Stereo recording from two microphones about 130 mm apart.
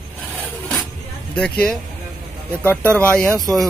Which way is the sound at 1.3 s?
5° left (ahead or behind).